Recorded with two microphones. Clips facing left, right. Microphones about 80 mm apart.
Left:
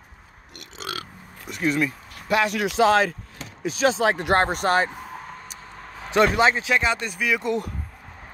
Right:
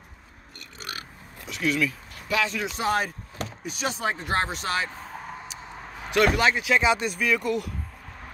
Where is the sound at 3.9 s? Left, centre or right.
Left.